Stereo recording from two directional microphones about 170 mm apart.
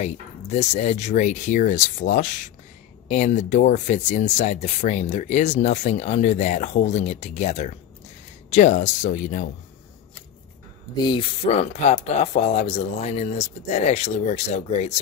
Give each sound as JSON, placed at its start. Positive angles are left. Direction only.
{"t": 0.0, "sound": "speech", "side_deg": 40}
{"t": 11.1, "sound": "speech", "side_deg": 35}